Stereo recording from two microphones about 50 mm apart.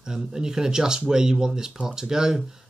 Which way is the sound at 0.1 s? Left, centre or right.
Centre.